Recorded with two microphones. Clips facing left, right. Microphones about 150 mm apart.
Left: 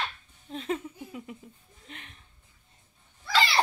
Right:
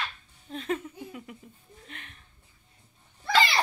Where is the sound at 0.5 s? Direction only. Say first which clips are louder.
Right 1 dB; 20° left (ahead or behind).